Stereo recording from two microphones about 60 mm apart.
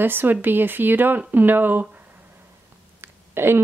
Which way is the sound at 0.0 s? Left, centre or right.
Right.